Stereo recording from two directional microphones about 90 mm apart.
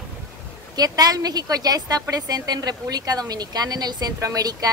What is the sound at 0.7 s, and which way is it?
A woman's voice, 45° right (ahead or behind).